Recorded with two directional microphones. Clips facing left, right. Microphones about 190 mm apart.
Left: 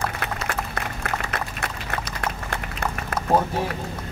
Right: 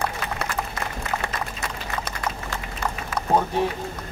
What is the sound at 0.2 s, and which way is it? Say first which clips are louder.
Applause: left 1 dB; 60° left (ahead or behind).